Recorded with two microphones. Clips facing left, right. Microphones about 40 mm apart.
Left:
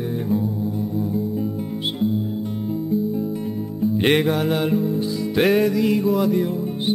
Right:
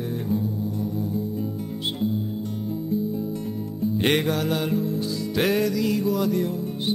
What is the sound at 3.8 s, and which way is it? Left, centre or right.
Music, centre.